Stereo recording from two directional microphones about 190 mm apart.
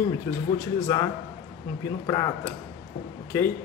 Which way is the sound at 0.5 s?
20° left (ahead or behind).